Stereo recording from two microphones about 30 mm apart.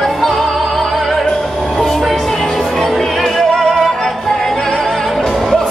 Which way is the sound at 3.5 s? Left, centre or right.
Centre.